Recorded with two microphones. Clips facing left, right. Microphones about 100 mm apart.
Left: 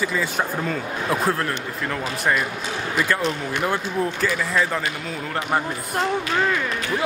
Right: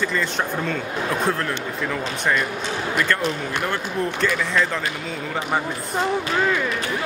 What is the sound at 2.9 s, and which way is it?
Speech, centre (ahead or behind).